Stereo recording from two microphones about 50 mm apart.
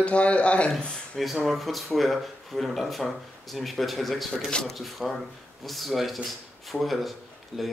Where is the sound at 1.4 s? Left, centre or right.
Centre.